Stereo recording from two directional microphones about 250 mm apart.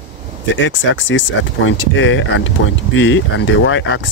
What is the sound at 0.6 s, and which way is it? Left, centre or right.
Speech, left.